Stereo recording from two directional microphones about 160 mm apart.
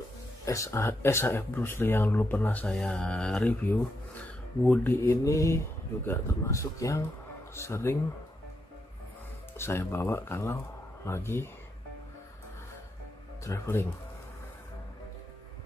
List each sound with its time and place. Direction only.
0.5 s speech: 20° left (ahead or behind)
9.6 s speech: 15° left (ahead or behind)
13.4 s speech: 15° left (ahead or behind)